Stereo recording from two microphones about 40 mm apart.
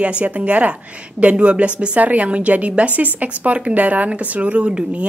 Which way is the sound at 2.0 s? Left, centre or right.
Right.